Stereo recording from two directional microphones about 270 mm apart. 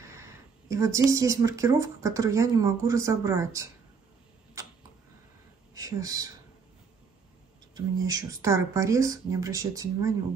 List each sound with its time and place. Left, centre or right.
0.7 s speech: centre
5.8 s speech: centre
8.1 s speech: centre